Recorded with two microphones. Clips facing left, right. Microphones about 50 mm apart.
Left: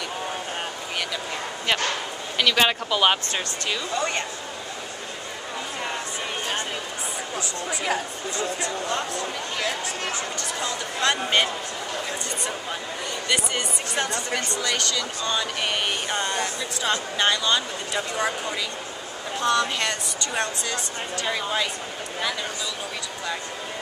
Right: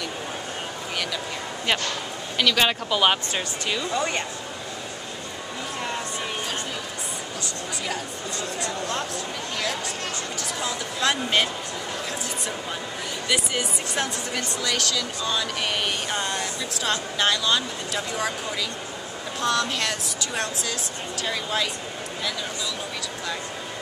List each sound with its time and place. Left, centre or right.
2.3 s speech: centre
7.8 s speech: left
10.6 s speech: centre
13.3 s speech: centre
19.4 s speech: centre